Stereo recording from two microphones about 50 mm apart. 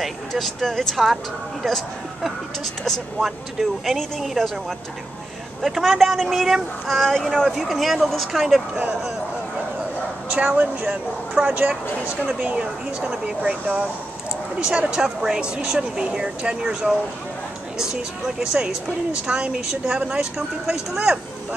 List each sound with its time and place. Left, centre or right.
0.3 s speech: centre
1.0 s speech: centre
2.2 s speech: centre
10.4 s speech: right
11.4 s speech: right
12.3 s speech: right
20.9 s speech: centre